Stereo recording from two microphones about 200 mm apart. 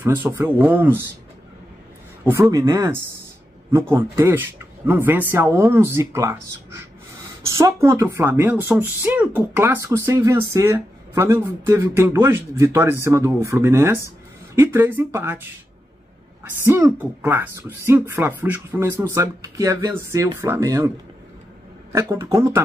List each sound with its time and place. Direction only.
0.0 s speech: 10° right (ahead or behind)
2.2 s speech: 15° right (ahead or behind)
16.4 s speech: 10° right (ahead or behind)
22.1 s speech: 20° right (ahead or behind)